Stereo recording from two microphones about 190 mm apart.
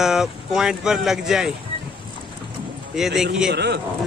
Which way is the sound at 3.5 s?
60° right (ahead or behind).